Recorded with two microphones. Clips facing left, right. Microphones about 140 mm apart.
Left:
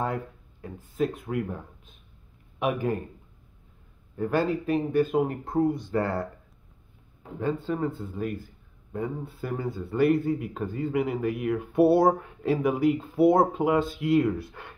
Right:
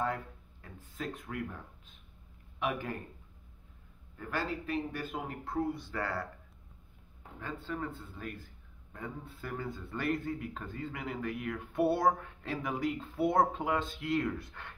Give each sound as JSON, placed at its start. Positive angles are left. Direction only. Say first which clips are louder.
{"t": 0.0, "sound": "speech", "louder": "left 5 dB", "side_deg": 20}
{"t": 2.6, "sound": "speech", "louder": "left 8 dB", "side_deg": 20}
{"t": 4.2, "sound": "speech", "louder": "left 11 dB", "side_deg": 20}
{"t": 5.5, "sound": "speech", "louder": "left 10 dB", "side_deg": 45}
{"t": 7.3, "sound": "speech", "louder": "left 11 dB", "side_deg": 20}